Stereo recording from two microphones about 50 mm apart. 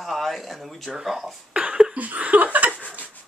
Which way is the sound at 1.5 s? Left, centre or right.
Right.